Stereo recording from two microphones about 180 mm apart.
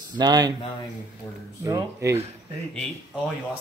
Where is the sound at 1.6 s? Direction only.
15° right (ahead or behind).